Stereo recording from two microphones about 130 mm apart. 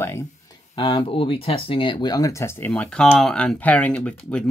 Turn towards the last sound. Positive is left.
turn(degrees=10)  # may be behind; listen again after turning